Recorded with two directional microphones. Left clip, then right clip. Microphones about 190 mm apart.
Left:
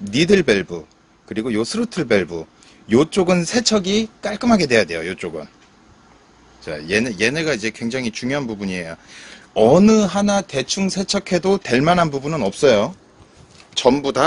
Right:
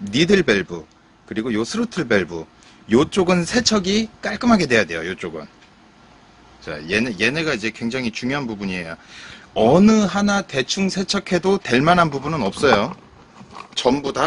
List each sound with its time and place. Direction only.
0.0 s speech: 5° left (ahead or behind)
6.6 s speech: 10° left (ahead or behind)
13.7 s speech: 15° left (ahead or behind)